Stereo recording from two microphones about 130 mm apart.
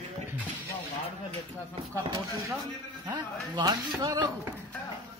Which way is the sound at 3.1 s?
30° right (ahead or behind).